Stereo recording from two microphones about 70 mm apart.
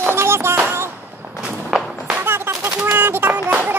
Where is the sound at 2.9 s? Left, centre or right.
Right.